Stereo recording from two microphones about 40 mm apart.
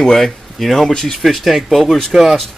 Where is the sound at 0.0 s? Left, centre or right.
Centre.